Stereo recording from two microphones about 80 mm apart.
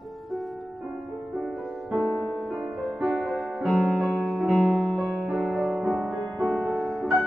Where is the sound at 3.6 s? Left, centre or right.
Centre.